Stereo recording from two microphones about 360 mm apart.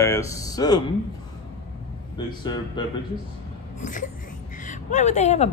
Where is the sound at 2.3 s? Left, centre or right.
Centre.